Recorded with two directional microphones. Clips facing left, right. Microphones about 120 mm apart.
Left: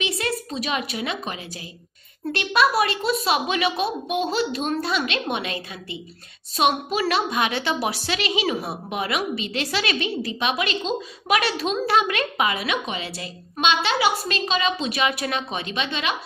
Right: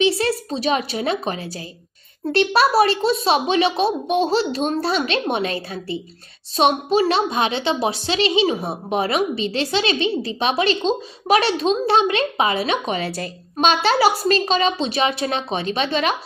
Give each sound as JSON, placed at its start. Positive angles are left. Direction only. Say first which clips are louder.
{"t": 0.0, "sound": "a woman's voice", "louder": "right 8 dB", "side_deg": -30}
{"t": 12.9, "sound": "a woman's voice", "louder": "right 7 dB", "side_deg": -45}